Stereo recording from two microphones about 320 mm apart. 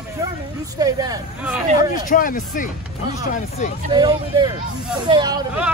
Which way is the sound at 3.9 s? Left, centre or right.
Centre.